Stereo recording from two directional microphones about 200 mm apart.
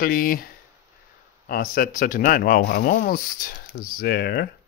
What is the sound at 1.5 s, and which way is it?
Speech, 45° left (ahead or behind).